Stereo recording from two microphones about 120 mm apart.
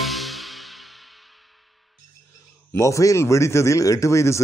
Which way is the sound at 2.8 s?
25° left (ahead or behind).